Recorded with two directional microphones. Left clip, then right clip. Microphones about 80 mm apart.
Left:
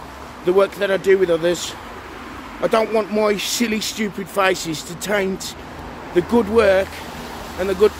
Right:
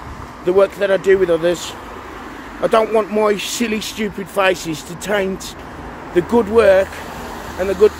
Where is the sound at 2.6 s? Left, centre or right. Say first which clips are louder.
Right 3 dB; centre.